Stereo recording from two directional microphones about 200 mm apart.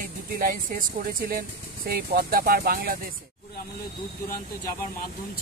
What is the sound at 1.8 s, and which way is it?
Speech, 50° right (ahead or behind).